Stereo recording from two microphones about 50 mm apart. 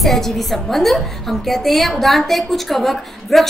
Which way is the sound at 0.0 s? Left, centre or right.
Centre.